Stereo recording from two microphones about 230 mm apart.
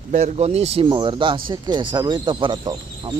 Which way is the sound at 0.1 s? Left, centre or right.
Right.